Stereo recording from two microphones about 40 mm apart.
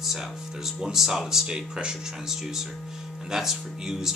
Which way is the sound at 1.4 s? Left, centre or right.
Right.